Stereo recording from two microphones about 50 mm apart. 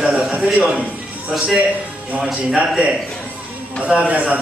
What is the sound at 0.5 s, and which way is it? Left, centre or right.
Speech, right.